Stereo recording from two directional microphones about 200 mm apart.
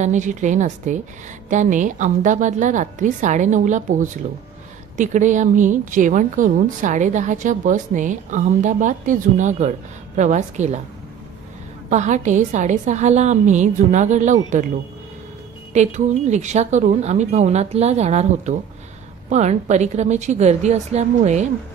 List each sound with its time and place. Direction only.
0.0 s speech: 40° right (ahead or behind)
11.9 s speech: 35° right (ahead or behind)
15.7 s speech: 35° right (ahead or behind)